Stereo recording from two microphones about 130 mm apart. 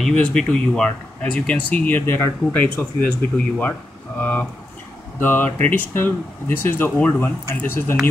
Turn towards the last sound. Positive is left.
turn(degrees=15)  # may be behind; listen again after turning